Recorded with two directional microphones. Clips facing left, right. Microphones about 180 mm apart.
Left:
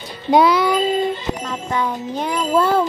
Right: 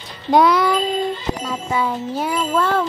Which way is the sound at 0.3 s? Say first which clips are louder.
Even; centre (ahead or behind).